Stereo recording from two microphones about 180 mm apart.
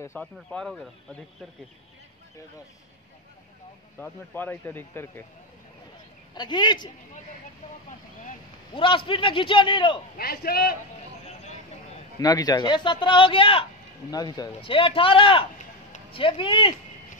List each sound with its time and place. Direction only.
0.0 s speech: 10° left (ahead or behind)
4.0 s speech: 10° left (ahead or behind)
6.3 s speech: 25° left (ahead or behind)
8.7 s speech: 30° left (ahead or behind)
10.1 s a man's voice: 55° left (ahead or behind)
12.2 s speech: 20° left (ahead or behind)